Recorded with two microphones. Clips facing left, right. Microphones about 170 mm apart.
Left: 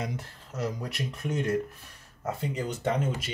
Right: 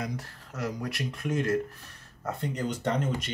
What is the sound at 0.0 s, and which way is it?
Speech, 20° left (ahead or behind).